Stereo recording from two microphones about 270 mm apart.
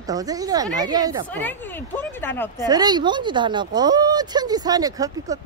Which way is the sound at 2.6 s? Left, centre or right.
Centre.